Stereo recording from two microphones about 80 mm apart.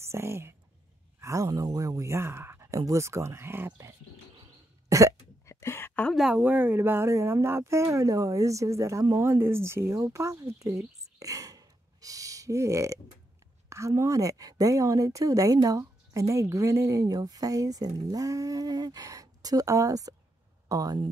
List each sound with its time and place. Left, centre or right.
0.0 s speech: right
4.8 s cough: right
5.4 s a sound: left
6.3 s speech: right
9.1 s a woman's voice: right